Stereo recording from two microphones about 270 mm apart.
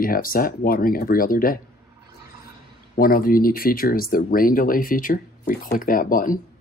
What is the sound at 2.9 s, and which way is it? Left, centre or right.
Speech, left.